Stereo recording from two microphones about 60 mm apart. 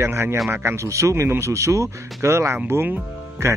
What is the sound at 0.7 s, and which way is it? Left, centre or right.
Speech, right.